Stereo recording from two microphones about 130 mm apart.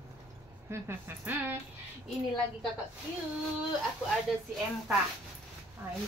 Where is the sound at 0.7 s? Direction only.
15° right (ahead or behind).